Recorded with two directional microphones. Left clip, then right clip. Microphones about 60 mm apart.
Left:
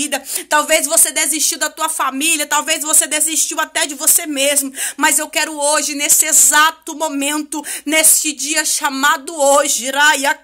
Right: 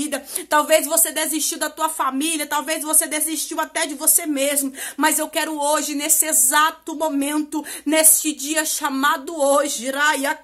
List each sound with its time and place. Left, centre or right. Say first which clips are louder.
0.0 s speech: left 5 dB; right
1.4 s speech: left 4 dB; right
2.0 s speech: left 5 dB; centre
5.0 s speech: left 4 dB; right
6.5 s speech: left 3 dB; centre
7.8 s speech: left 4 dB; right